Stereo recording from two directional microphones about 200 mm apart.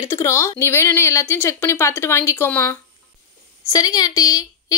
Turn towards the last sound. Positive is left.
turn(degrees=20)  # may be behind; listen again after turning